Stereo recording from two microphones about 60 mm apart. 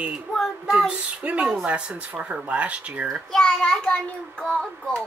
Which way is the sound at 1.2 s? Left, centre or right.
Right.